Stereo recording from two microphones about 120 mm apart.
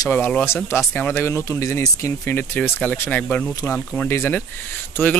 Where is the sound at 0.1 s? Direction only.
15° left (ahead or behind).